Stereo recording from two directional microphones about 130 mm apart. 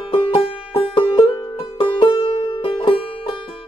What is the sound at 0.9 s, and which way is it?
Music, 40° left (ahead or behind).